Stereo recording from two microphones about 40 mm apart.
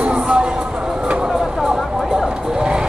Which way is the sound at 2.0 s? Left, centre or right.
Centre.